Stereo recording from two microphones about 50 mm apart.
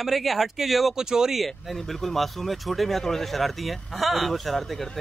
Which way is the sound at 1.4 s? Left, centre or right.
Centre.